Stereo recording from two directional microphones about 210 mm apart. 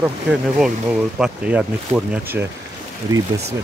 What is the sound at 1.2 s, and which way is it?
Speech, 5° right (ahead or behind).